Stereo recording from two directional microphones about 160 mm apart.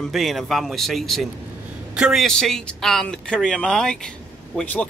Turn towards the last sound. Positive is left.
turn(degrees=10)  # may be behind; listen again after turning